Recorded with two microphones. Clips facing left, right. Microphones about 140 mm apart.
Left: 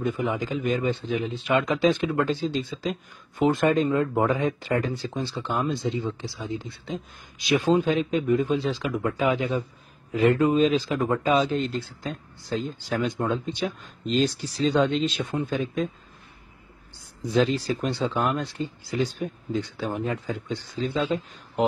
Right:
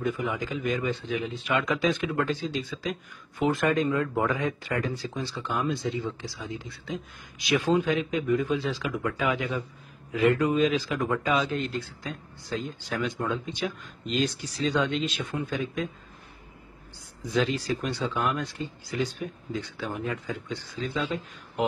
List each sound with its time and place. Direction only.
0.0 s speech: 25° left (ahead or behind)
17.3 s speech: 30° left (ahead or behind)